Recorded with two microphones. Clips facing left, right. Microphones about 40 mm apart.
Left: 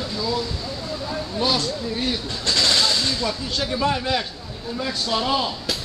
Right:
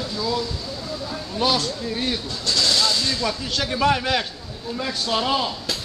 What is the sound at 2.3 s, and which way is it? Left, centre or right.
Vehicle, left.